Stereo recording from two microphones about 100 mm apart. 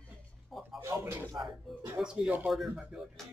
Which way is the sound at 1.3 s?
Centre (ahead or behind).